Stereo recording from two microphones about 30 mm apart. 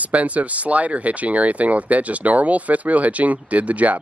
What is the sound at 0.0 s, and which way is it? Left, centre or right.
Speech, right.